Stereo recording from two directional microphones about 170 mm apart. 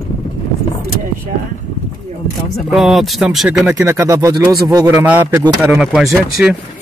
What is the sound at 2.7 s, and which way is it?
A man's voice, centre (ahead or behind).